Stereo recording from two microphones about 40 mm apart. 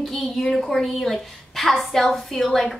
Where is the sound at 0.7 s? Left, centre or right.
Centre.